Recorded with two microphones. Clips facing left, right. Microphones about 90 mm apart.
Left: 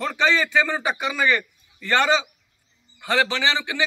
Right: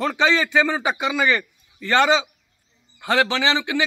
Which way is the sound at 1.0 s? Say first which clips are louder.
Right 3 dB; 15° right (ahead or behind).